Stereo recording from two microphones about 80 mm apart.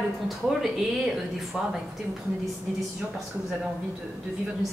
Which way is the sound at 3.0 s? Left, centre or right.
Centre.